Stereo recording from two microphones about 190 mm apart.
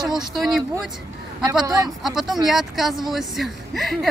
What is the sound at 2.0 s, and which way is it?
Speech, centre (ahead or behind).